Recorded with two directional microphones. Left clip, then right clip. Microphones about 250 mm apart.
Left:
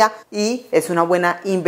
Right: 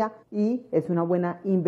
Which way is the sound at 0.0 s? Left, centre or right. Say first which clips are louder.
Left 10 dB; centre.